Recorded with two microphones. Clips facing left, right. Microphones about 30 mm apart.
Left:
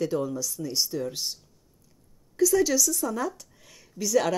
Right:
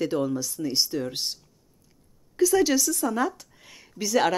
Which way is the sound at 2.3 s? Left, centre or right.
Right.